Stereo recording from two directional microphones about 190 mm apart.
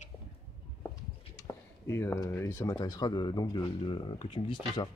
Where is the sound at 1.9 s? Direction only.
15° left (ahead or behind).